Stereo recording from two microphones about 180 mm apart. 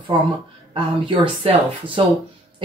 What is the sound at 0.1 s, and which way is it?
Speech, 25° right (ahead or behind).